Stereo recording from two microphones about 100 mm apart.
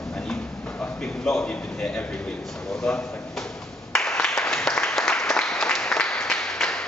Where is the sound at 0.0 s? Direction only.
5° left (ahead or behind).